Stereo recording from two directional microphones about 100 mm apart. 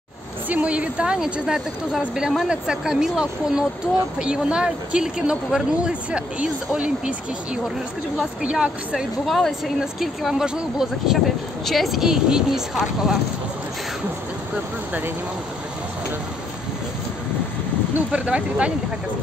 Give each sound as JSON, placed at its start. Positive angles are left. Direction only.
{"t": 0.5, "sound": "a woman's voice", "side_deg": -15}
{"t": 8.2, "sound": "a woman's voice", "side_deg": -10}
{"t": 17.9, "sound": "a woman's voice", "side_deg": -10}